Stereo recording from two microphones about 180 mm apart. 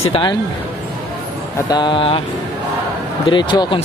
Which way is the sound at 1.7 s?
25° left (ahead or behind).